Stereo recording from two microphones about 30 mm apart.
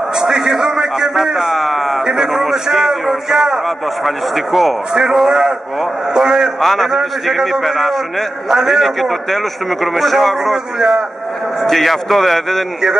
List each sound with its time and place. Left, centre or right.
0.1 s a sound: right
1.5 s speech: centre
2.0 s a sound: centre
2.4 s a man's voice: centre
3.6 s a man's voice: centre
6.1 s a man's voice: right
6.6 s a man's voice: centre
6.9 s a man's voice: centre
8.5 s a man's voice: centre
9.0 s a man's voice: centre
10.5 s a man's voice: centre
11.6 s a man's voice: centre